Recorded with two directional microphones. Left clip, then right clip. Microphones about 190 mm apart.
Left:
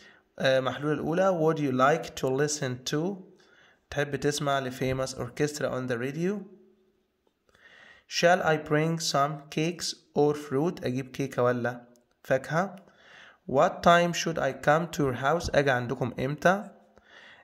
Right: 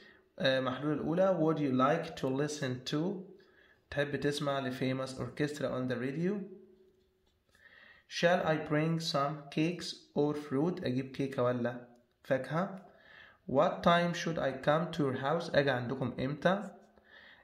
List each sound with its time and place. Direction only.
0.0 s speech: 30° left (ahead or behind)
7.6 s speech: 30° left (ahead or behind)
17.1 s a sound: 30° left (ahead or behind)